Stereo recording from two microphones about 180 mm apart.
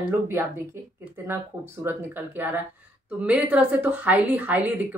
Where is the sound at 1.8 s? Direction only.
10° right (ahead or behind).